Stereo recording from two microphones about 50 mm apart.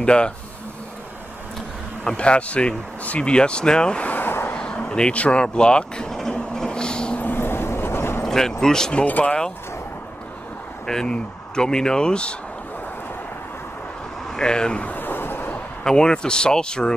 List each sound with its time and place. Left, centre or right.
0.0 s speech: centre
2.0 s speech: left
4.0 s a sound: left
4.3 s a sound: left
4.6 s speech: centre
6.1 s train: centre
7.2 s vehicle: left
8.2 s speech: centre
9.0 s speech: left
10.9 s speech: centre
14.3 s speech: centre
14.9 s vehicle: left
15.8 s speech: centre